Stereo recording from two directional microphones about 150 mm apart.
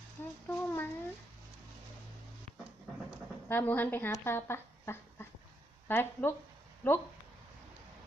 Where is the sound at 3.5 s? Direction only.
15° left (ahead or behind).